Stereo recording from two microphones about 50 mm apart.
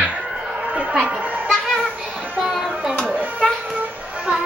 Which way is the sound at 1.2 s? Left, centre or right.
Right.